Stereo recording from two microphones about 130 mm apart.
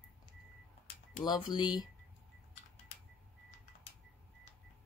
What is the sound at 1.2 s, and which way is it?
Speech, 35° left (ahead or behind).